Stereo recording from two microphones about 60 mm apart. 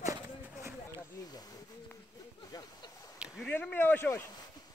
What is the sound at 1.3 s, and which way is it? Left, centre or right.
Snake, left.